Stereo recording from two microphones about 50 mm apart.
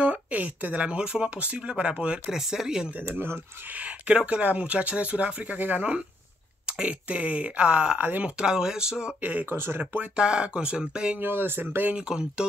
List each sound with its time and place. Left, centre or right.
0.0 s speech: right
2.3 s speech: centre
3.1 s speech: right
3.7 s speech: right
6.6 s speech: right
8.0 s speech: right
8.4 s speech: centre
9.2 s speech: right
9.5 s speech: right
9.9 s speech: centre
11.1 s speech: right
11.9 s speech: centre